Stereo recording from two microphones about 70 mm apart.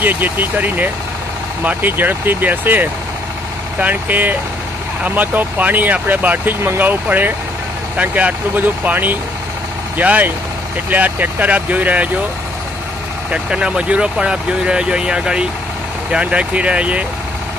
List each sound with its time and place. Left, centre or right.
0.0 s speech: right
13.3 s speech: centre